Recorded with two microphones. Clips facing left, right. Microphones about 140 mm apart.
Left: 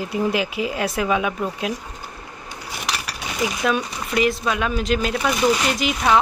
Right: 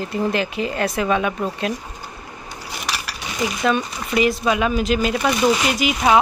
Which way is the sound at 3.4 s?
Centre (ahead or behind).